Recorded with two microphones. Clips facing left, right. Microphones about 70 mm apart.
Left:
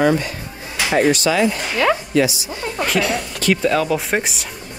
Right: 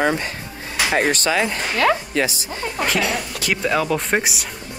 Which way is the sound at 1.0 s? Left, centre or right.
Right.